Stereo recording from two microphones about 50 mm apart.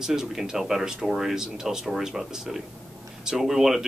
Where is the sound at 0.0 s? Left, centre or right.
Centre.